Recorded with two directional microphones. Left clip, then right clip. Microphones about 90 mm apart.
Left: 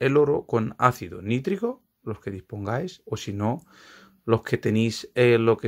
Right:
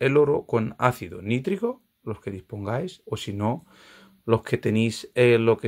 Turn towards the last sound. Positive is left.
turn(degrees=20)  # may be behind; listen again after turning